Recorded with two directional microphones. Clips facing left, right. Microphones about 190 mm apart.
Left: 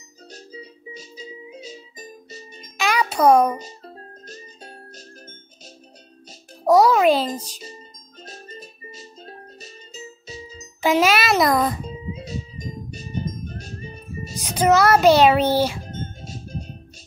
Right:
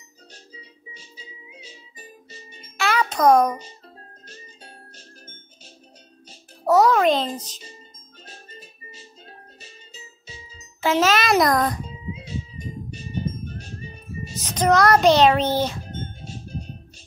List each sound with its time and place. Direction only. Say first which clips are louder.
0.9 s music: left 11 dB; 40° left (ahead or behind)
2.8 s music: left 1 dB; 15° left (ahead or behind)
3.5 s music: left 4 dB; 40° left (ahead or behind)
6.6 s music: left 2 dB; 10° left (ahead or behind)
7.3 s a child's voice: left 2 dB; 10° left (ahead or behind)
8.3 s music: left 6 dB; 40° left (ahead or behind)
10.8 s a child's voice: left 2 dB; 15° left (ahead or behind)
12.1 s music: left 1 dB; 40° left (ahead or behind)
14.3 s a child's voice: left 2 dB; 10° left (ahead or behind)